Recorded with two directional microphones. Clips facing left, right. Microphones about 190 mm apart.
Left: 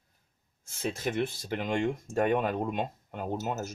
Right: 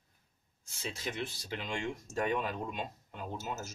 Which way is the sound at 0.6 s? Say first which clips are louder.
Left 8 dB; 50° left (ahead or behind).